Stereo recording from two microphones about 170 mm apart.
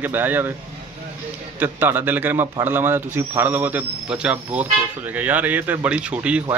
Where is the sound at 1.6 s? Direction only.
10° right (ahead or behind).